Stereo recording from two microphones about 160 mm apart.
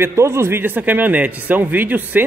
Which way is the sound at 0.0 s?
15° right (ahead or behind).